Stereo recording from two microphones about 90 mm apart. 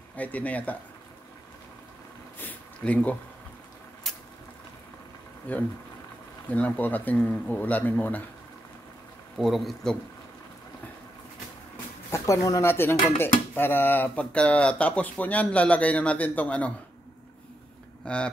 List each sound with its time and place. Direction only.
0.1 s speech: 15° left (ahead or behind)
2.3 s a sound: 20° left (ahead or behind)
4.1 s a sound: 5° left (ahead or behind)
5.5 s speech: 15° left (ahead or behind)
9.4 s a man's voice: centre (ahead or behind)
12.1 s speech: 40° left (ahead or behind)
13.2 s speech: 25° left (ahead or behind)
18.0 s speech: 10° left (ahead or behind)